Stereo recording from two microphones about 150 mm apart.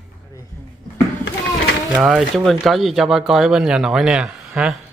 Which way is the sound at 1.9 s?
5° right (ahead or behind).